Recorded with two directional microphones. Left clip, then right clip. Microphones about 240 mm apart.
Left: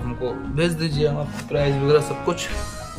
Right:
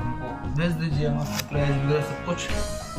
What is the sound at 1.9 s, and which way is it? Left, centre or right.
Speech, centre.